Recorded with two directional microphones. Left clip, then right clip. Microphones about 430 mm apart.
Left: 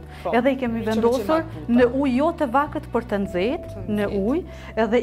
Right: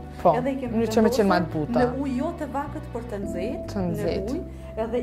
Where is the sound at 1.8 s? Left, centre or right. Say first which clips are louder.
Left 6 dB; left.